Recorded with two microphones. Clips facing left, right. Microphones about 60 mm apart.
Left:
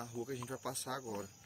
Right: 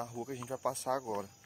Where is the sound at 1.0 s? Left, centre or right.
Right.